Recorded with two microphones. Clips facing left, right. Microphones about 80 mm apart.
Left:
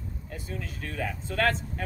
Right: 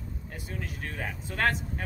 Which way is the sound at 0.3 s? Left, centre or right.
Right.